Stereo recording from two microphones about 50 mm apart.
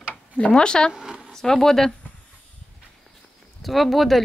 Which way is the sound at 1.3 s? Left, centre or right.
Centre.